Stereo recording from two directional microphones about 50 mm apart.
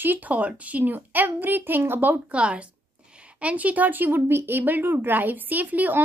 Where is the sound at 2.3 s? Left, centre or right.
Right.